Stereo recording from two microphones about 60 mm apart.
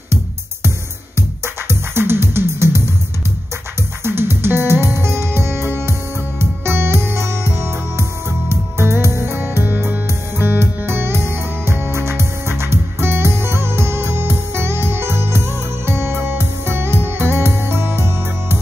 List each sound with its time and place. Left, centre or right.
1.1 s music: right
4.0 s music: right